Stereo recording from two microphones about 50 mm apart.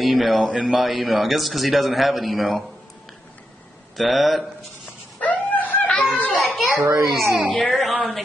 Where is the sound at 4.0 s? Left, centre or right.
Centre.